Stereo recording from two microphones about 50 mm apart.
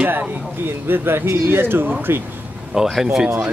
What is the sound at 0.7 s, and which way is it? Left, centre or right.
Speech, right.